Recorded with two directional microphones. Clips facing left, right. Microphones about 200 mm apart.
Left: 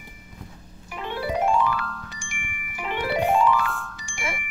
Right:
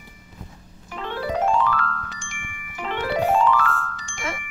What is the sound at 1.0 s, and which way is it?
Glockenspiel, 10° left (ahead or behind).